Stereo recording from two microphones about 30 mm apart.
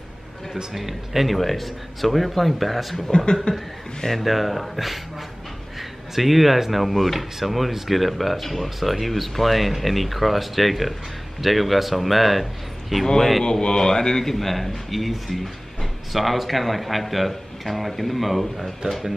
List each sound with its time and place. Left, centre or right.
0.7 s speech: centre
3.5 s a man's voice: left
4.2 s speech: centre
12.9 s speech: centre
13.4 s a man's voice: left
14.3 s speech: centre